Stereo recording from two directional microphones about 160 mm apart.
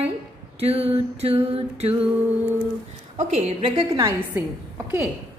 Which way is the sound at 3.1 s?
45° right (ahead or behind).